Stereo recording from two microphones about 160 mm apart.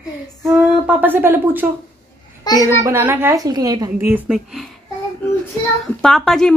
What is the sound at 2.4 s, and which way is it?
Speech, 25° left (ahead or behind).